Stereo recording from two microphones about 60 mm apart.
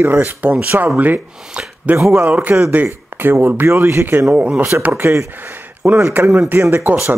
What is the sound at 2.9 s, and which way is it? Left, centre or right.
Speech, right.